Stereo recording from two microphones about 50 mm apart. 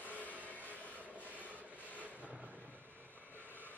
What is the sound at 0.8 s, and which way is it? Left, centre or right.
Train, left.